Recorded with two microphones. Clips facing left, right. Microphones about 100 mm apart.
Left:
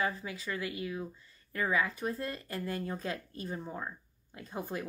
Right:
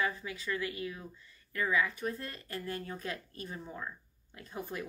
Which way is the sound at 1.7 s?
35° left (ahead or behind).